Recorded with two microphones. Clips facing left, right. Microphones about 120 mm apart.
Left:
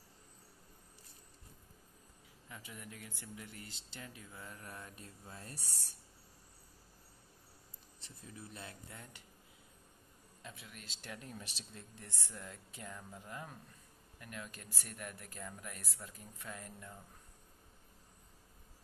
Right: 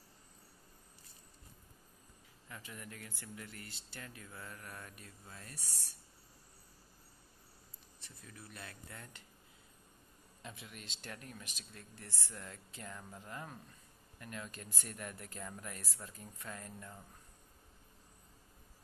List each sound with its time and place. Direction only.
2.4 s speech: 15° left (ahead or behind); by 5.9 s 35° left (ahead or behind)
8.0 s speech: 25° left (ahead or behind)
10.4 s speech: centre (ahead or behind)
11.1 s speech: 25° left (ahead or behind)
11.7 s speech: 20° left (ahead or behind)